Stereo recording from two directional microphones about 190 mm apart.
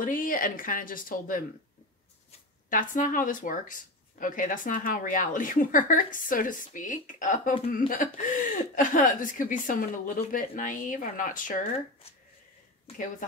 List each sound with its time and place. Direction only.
0.0 s speech: 45° left (ahead or behind)
2.7 s speech: 45° left (ahead or behind)